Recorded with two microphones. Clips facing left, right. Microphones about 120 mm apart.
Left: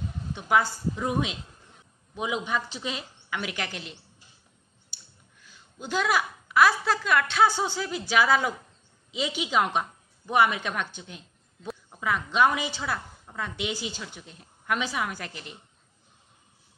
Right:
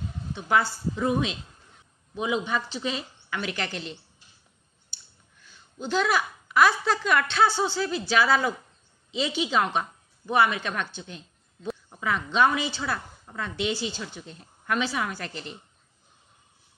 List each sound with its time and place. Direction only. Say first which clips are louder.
0.3 s a woman's voice: even; 15° left (ahead or behind)
4.9 s clicking: even; 10° left (ahead or behind)
5.8 s a woman's voice: right 1 dB; 10° left (ahead or behind)